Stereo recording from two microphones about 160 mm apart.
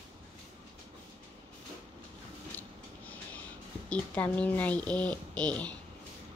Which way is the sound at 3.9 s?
10° left (ahead or behind).